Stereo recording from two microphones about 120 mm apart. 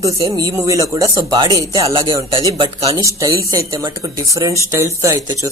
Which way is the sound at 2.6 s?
55° right (ahead or behind).